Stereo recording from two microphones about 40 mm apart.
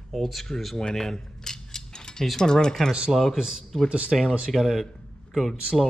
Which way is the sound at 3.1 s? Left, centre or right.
Centre.